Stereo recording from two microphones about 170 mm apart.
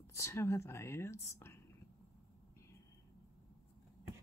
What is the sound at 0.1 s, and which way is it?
Speech, 15° left (ahead or behind).